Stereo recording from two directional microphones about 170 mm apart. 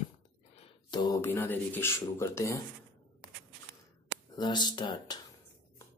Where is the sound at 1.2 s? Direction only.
15° left (ahead or behind).